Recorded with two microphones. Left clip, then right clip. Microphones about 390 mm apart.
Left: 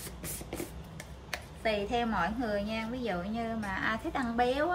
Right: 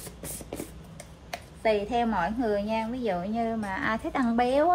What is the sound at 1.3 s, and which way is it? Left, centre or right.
A woman's voice, centre.